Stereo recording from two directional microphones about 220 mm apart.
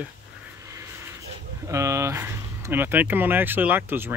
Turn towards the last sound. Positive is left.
turn(degrees=-10)  # may be behind; listen again after turning